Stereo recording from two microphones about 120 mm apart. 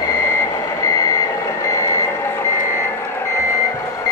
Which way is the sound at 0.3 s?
25° left (ahead or behind).